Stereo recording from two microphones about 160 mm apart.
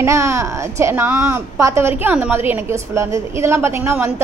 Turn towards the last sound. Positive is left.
turn(degrees=-15)  # may be behind; listen again after turning